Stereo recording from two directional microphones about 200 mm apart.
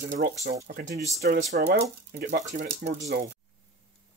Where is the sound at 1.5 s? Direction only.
55° right (ahead or behind).